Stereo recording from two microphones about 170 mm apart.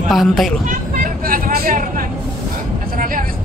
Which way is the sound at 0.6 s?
55° right (ahead or behind).